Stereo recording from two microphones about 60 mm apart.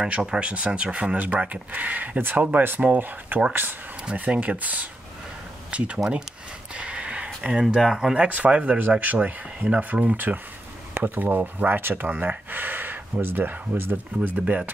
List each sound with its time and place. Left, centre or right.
0.0 s speech: centre; by 3.4 s right
4.0 s speech: centre
6.7 s a sound: centre
7.6 s speech: centre; by 14.6 s right